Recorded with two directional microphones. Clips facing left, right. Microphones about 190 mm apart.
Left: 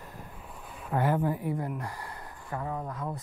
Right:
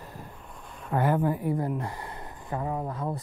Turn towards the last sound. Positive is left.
turn(degrees=-30)  # may be behind; listen again after turning